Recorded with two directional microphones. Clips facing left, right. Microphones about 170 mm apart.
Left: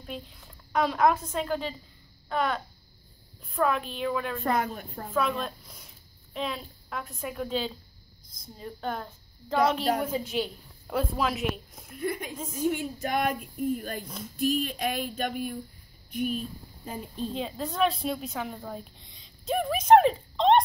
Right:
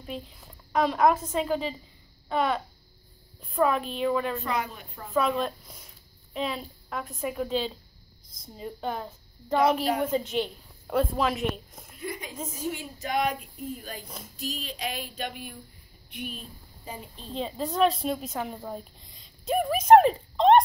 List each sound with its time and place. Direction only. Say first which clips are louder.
0.0 s a woman's voice: right 2 dB; 5° right (ahead or behind)
2.2 s babbling: right 2 dB; centre (ahead or behind)
3.4 s a woman's voice: right 2 dB; centre (ahead or behind)
4.4 s a sound: left 3 dB; 50° left (ahead or behind)
5.1 s a woman's voice: right 3 dB; centre (ahead or behind)
12.0 s a woman's voice: left 5 dB; 55° left (ahead or behind)
12.4 s a woman's voice: left 2 dB; centre (ahead or behind)
12.7 s a sound: left 1 dB; 55° left (ahead or behind)
14.0 s a woman's voice: left 4 dB; centre (ahead or behind)
14.3 s a sound: left 10 dB; 55° left (ahead or behind)
16.1 s speech: left 8 dB; 45° left (ahead or behind)
17.3 s speech: right 7 dB; centre (ahead or behind)